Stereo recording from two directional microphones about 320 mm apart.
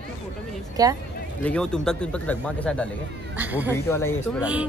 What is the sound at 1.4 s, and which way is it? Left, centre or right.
Speech, centre.